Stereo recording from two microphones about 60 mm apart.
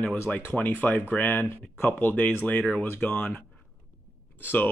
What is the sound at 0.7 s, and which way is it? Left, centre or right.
Speech, left.